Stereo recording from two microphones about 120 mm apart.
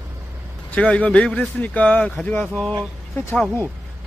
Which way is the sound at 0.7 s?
10° left (ahead or behind).